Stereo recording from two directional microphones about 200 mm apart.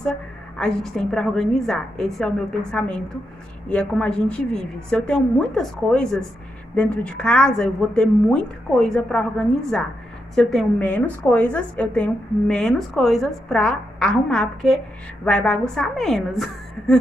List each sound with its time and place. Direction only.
0.0 s a woman's voice: 5° left (ahead or behind)